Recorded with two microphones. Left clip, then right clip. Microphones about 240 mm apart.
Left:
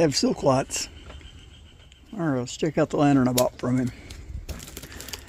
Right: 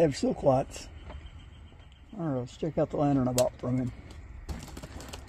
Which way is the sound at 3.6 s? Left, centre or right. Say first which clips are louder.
Left 6 dB; left.